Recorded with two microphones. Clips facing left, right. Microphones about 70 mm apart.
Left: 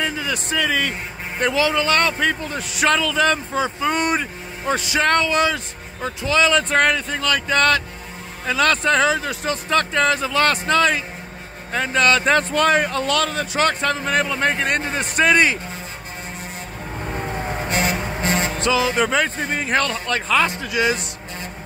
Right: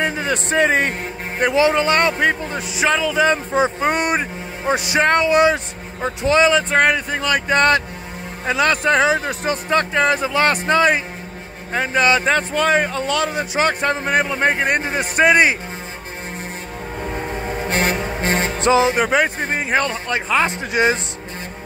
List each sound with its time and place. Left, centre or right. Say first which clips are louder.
0.0 s a man's voice: right 3 dB; right
2.5 s speech: even; centre
3.5 s speech: right 3 dB; right
6.5 s speech: right 2 dB; centre
12.3 s a man's voice: even; centre; by 15.5 s right
17.6 s music: right 3 dB; right
19.0 s speech: right 3 dB; centre